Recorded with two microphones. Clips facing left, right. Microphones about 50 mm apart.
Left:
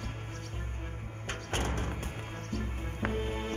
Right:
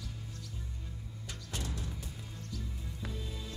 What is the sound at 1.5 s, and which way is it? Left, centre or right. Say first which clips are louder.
Music: left 7 dB; left.